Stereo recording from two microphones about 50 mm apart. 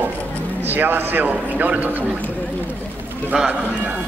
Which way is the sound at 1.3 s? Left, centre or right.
Right.